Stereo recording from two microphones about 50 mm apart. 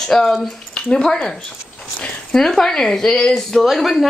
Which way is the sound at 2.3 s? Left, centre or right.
Centre.